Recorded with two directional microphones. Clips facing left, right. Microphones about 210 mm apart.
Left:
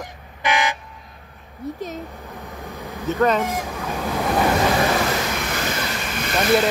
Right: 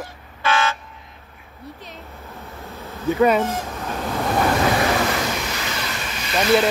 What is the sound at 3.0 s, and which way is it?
Speech, 10° right (ahead or behind).